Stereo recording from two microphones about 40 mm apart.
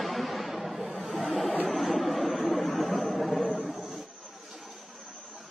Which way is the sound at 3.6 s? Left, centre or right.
Centre.